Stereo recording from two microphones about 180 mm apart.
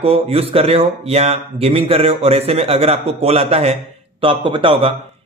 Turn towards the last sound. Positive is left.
turn(degrees=-30)  # may be behind; listen again after turning